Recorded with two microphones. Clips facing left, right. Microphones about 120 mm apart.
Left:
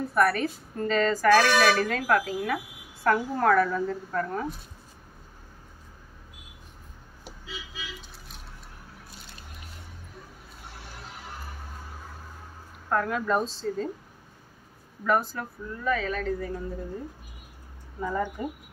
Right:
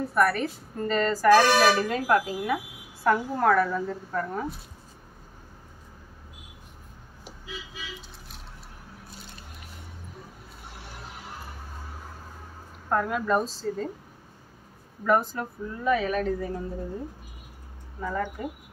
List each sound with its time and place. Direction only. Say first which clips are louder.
0.1 s a woman's voice: left 1 dB; centre (ahead or behind)
12.9 s a woman's voice: right 1 dB; 10° right (ahead or behind)
15.0 s speech: right 2 dB; 15° right (ahead or behind)
18.0 s speech: left 1 dB; 10° left (ahead or behind)